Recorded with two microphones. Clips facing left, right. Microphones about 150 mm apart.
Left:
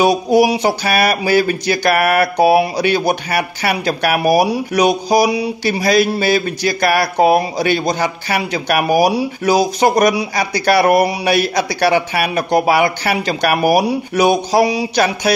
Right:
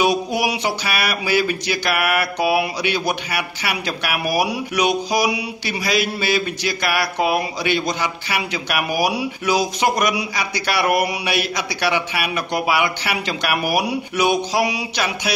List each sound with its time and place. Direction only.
0.0 s speech: 40° left (ahead or behind)